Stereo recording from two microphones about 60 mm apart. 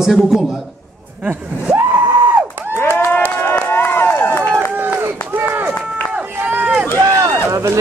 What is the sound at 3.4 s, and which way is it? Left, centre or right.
Run, left.